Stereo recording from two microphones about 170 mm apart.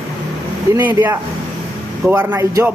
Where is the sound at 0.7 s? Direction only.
10° right (ahead or behind).